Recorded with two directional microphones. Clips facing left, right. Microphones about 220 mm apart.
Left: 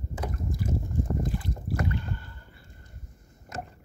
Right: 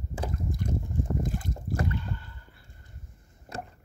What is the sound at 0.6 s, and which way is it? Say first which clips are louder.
Boat: left 2 dB; 5° left (ahead or behind).